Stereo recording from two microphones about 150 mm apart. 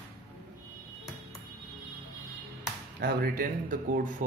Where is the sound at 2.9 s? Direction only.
80° right.